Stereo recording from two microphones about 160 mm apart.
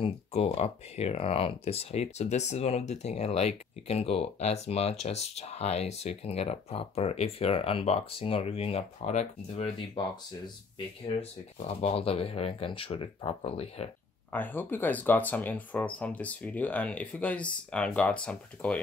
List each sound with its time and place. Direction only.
0.0 s speech: 40° left (ahead or behind)
11.1 s speech: 40° left (ahead or behind)
14.3 s speech: 10° left (ahead or behind)